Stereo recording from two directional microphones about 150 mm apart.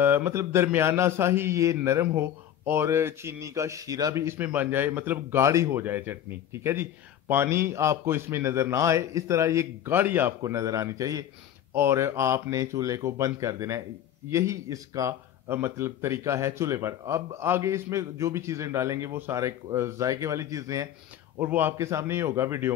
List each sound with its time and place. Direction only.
0.0 s speech: 15° right (ahead or behind)